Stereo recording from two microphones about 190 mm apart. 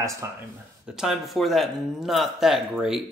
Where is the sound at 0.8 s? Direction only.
5° right (ahead or behind).